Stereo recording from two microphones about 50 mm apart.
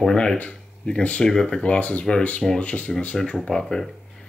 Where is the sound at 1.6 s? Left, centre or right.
Left.